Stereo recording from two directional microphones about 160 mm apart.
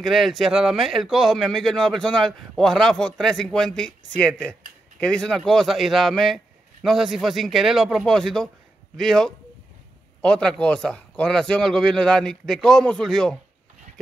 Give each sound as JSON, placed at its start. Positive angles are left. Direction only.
{"t": 0.0, "sound": "speech", "side_deg": 0}